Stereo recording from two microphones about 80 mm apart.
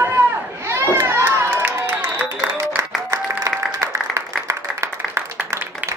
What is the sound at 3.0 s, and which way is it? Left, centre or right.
Applause, right.